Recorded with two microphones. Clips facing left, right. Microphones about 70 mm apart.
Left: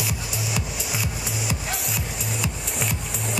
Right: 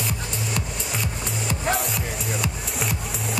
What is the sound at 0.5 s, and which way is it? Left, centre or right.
Music, centre.